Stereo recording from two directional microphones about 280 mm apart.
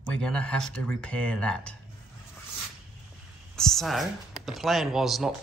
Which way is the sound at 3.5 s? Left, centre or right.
Centre.